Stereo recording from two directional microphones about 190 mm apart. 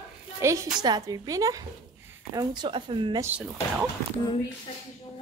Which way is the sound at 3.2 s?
5° right (ahead or behind).